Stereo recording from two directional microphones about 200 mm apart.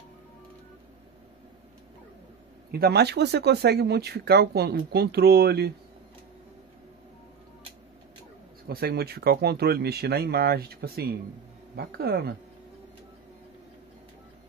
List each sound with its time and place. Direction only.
2.7 s speech: 50° right (ahead or behind)
8.6 s speech: 50° right (ahead or behind)